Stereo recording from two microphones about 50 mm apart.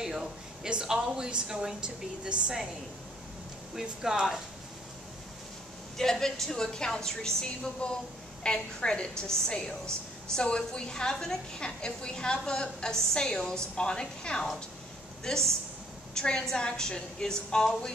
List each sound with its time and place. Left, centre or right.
0.0 s a woman's voice: centre
4.0 s speech: centre
5.9 s a woman's voice: centre